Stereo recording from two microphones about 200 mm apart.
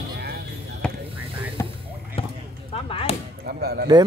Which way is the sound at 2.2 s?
30° left (ahead or behind).